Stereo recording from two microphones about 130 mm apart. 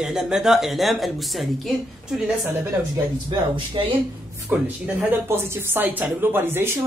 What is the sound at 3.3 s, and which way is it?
Speech, 40° right (ahead or behind).